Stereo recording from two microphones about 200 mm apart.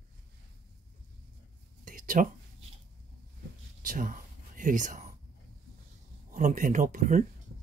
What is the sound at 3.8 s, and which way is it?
Whispering, 45° right (ahead or behind).